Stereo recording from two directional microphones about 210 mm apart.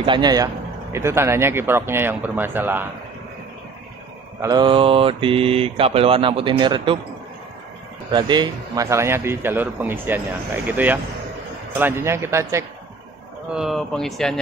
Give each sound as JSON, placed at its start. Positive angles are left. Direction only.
{"t": 0.0, "sound": "mantra", "side_deg": -20}
{"t": 0.9, "sound": "a man's voice", "side_deg": -15}
{"t": 4.4, "sound": "mantra", "side_deg": -20}
{"t": 8.1, "sound": "a man's voice", "side_deg": -20}
{"t": 13.5, "sound": "speech", "side_deg": 0}